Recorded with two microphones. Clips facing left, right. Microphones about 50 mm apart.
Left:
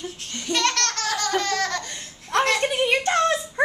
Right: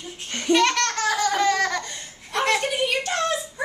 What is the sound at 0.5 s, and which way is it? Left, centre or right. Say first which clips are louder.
Laughter: right 4 dB; centre.